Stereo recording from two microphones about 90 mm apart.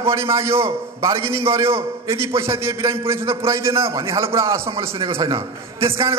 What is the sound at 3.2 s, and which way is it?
A man's voice, 30° right (ahead or behind).